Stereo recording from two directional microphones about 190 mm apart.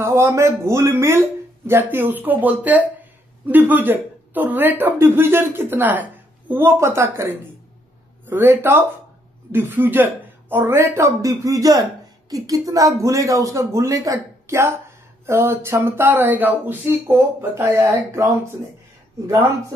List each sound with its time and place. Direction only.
0.0 s speech: 15° right (ahead or behind)